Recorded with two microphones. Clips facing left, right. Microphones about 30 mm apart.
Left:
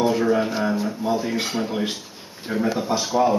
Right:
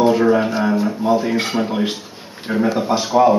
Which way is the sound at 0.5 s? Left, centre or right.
Centre.